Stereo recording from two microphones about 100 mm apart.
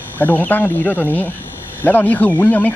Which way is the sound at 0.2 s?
20° left (ahead or behind).